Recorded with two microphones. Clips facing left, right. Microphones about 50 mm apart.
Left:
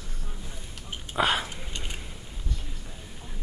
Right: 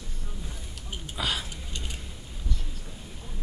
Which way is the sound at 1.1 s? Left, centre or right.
Left.